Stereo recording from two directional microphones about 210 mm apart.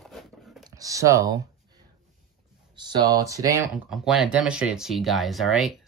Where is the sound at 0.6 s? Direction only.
15° right (ahead or behind).